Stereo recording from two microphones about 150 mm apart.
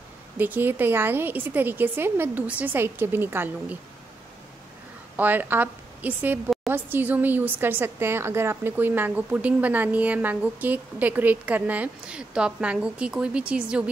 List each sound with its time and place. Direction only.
0.4 s speech: 15° right (ahead or behind)
5.1 s a woman's voice: 10° right (ahead or behind)